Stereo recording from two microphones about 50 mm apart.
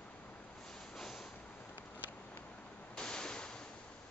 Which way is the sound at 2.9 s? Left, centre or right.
Centre.